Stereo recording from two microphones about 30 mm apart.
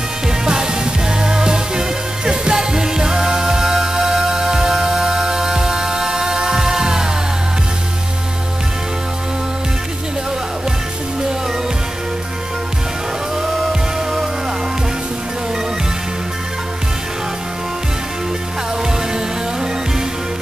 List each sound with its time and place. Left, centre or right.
0.5 s music: right